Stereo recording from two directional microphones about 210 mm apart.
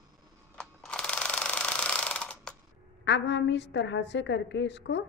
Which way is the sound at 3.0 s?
55° left (ahead or behind).